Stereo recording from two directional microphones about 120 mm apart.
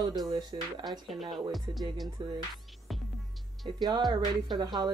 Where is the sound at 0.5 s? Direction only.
45° right (ahead or behind).